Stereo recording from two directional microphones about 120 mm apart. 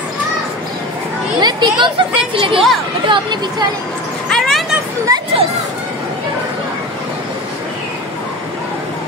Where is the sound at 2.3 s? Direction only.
45° right (ahead or behind).